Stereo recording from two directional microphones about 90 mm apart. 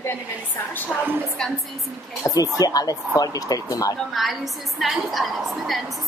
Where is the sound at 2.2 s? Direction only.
40° left (ahead or behind).